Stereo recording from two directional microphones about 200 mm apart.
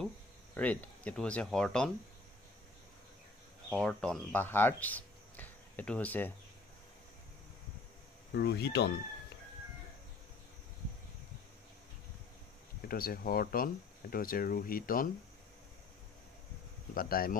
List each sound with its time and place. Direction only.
0.6 s speech: 5° left (ahead or behind)
3.7 s speech: 5° left (ahead or behind)
8.3 s speech: 55° left (ahead or behind)
12.8 s speech: 45° left (ahead or behind)
16.9 s speech: 45° left (ahead or behind)